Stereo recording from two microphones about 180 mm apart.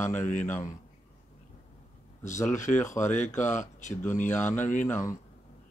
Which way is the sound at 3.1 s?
40° left (ahead or behind).